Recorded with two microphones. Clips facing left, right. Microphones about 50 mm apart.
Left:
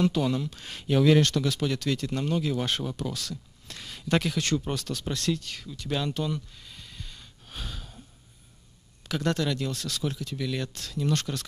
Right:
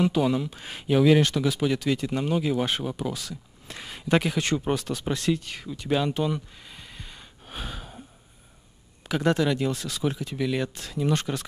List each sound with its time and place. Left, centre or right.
0.0 s speech: centre
9.1 s speech: centre